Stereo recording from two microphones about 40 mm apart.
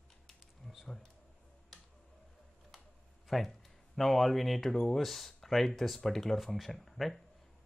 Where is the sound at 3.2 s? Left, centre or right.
Centre.